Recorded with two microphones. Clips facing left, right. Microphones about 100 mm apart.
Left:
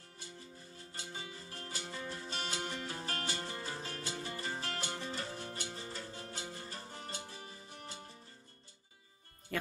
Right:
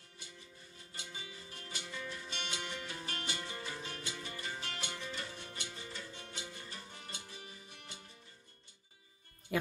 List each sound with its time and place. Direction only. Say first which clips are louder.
0.7 s music: left 2 dB; 35° left (ahead or behind)
9.5 s speech: right 3 dB; 10° right (ahead or behind)